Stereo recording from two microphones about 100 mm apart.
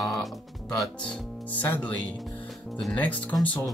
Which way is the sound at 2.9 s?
15° left (ahead or behind).